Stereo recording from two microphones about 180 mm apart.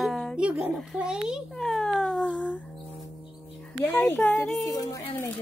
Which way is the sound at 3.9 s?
10° left (ahead or behind).